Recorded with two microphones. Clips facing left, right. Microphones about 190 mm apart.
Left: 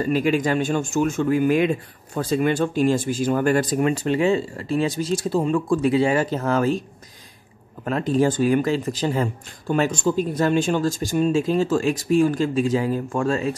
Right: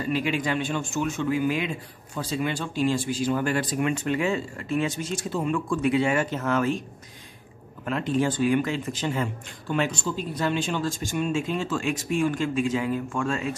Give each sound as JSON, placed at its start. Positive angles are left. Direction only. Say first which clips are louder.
{"t": 0.0, "sound": "speech", "louder": "left 6 dB", "side_deg": 45}
{"t": 7.8, "sound": "speech", "louder": "left 5 dB", "side_deg": 40}